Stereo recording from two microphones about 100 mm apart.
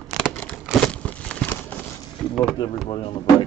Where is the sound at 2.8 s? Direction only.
65° left (ahead or behind).